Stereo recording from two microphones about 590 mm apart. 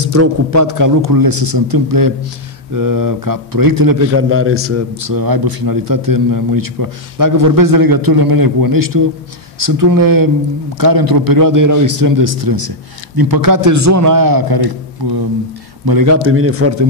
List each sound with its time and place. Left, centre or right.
0.0 s a man's voice: right
4.1 s a man's voice: right
16.3 s a man's voice: right